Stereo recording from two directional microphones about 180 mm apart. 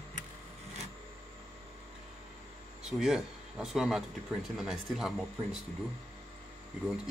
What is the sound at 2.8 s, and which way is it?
Speech, centre (ahead or behind).